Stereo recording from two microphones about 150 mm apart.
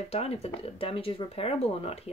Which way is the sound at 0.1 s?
40° left (ahead or behind).